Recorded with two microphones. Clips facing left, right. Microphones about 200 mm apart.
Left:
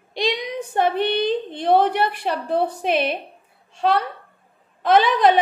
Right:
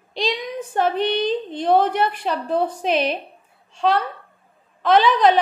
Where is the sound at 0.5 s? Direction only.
65° left (ahead or behind).